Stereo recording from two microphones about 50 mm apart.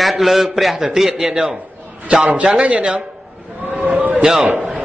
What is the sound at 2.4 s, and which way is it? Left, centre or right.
Speech, right.